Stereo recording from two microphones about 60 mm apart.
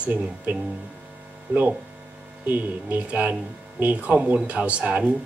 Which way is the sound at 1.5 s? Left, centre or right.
Right.